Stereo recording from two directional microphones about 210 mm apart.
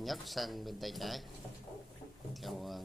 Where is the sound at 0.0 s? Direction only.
Centre (ahead or behind).